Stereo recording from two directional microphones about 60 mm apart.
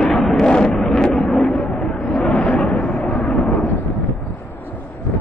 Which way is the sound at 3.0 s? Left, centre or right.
Left.